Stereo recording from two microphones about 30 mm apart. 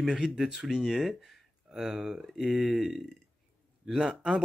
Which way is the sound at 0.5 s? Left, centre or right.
Right.